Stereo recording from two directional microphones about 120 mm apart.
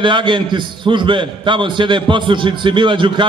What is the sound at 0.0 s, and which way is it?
A man's voice, 40° right (ahead or behind).